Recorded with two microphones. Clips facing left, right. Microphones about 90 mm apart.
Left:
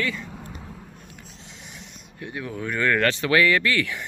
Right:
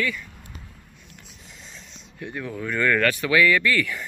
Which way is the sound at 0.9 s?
45° left (ahead or behind).